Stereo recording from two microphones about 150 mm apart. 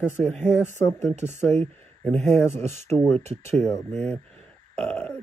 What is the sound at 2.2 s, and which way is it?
A man's voice, 15° left (ahead or behind).